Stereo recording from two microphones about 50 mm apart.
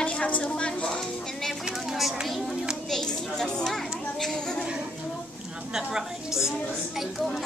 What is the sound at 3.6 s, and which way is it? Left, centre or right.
Children playing, centre.